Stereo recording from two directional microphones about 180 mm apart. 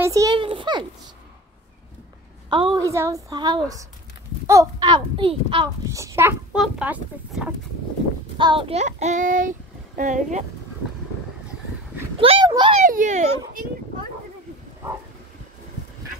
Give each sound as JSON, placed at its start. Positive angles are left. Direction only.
{"t": 0.0, "sound": "a child's voice", "side_deg": -20}
{"t": 0.4, "sound": "a woman's voice", "side_deg": -30}
{"t": 2.5, "sound": "a woman's voice", "side_deg": -25}
{"t": 5.9, "sound": "speech", "side_deg": -15}
{"t": 8.4, "sound": "speech", "side_deg": -25}
{"t": 12.2, "sound": "a woman's voice", "side_deg": -30}
{"t": 12.8, "sound": "a child's voice", "side_deg": -45}